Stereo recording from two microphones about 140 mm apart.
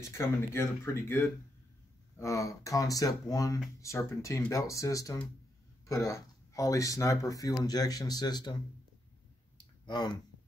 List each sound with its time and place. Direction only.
0.0 s speech: 20° left (ahead or behind)
9.8 s speech: 30° left (ahead or behind)